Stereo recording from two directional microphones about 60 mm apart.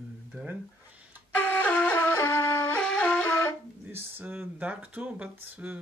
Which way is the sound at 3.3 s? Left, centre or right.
Left.